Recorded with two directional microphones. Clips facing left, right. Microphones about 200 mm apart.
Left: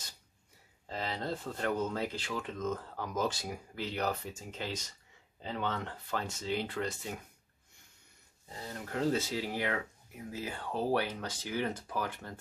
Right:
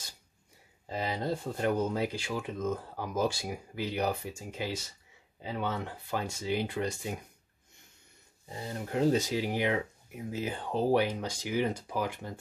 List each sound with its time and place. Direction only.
0.8 s speech: 10° right (ahead or behind)
8.5 s speech: 20° right (ahead or behind)